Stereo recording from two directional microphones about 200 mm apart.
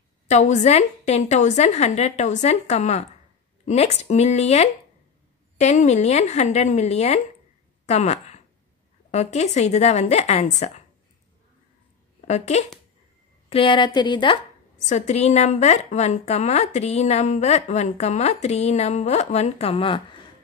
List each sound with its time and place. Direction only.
0.3 s a woman's voice: 35° left (ahead or behind)
7.8 s a sound: 35° left (ahead or behind)
9.1 s a woman's voice: 35° left (ahead or behind)
12.3 s a woman's voice: 35° left (ahead or behind)
14.8 s a woman's voice: 35° left (ahead or behind)